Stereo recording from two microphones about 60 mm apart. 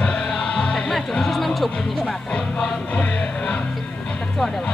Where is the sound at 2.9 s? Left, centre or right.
Left.